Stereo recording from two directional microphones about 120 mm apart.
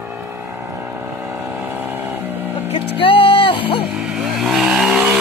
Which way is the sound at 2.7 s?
50° left (ahead or behind).